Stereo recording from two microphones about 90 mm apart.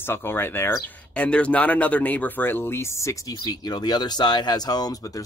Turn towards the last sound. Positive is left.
turn(degrees=45)  # may be behind; listen again after turning